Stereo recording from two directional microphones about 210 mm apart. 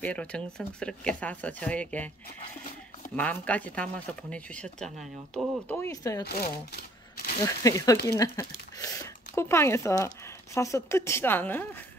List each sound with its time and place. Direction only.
0.0 s speech: 5° left (ahead or behind)
3.2 s speech: 5° left (ahead or behind)
5.8 s speech: 15° left (ahead or behind)
6.2 s speech: 45° left (ahead or behind)
7.4 s speech: 15° left (ahead or behind)